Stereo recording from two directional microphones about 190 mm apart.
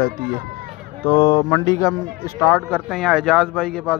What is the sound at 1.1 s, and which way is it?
A man's voice, 20° left (ahead or behind).